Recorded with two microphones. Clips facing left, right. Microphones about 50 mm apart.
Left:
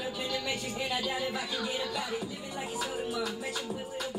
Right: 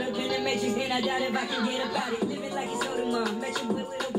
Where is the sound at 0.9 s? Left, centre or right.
Right.